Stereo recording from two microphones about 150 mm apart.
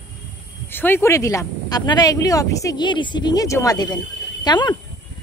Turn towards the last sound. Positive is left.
turn(degrees=30)  # may be behind; listen again after turning